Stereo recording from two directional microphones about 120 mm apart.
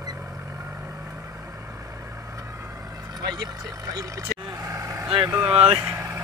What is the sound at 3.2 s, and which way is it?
Speech, 35° right (ahead or behind).